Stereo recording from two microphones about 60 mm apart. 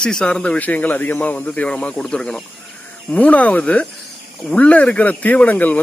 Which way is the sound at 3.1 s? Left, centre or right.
Left.